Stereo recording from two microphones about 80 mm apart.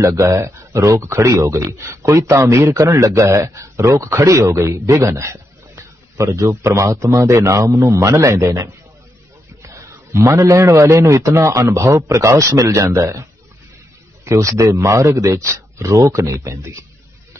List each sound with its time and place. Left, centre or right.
0.0 s a man's voice: right
10.1 s speech: right